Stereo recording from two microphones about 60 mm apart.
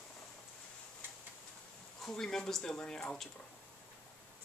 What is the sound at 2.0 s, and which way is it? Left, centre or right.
Speech, centre.